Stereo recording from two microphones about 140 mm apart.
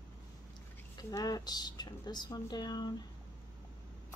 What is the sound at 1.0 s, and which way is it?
A woman's voice, 25° left (ahead or behind).